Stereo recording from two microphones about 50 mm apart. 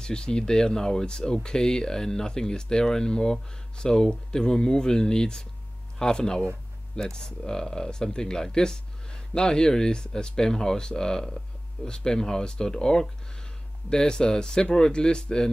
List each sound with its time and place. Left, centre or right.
0.0 s speech: centre